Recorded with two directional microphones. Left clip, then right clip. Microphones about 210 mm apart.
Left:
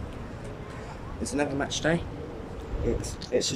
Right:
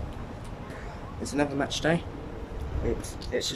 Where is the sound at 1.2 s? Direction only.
Centre (ahead or behind).